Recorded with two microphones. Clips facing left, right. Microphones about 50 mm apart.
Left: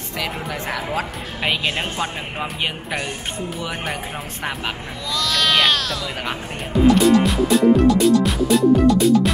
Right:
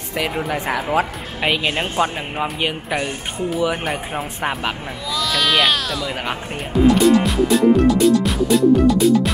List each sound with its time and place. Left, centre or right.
0.5 s speech: centre
6.8 s music: centre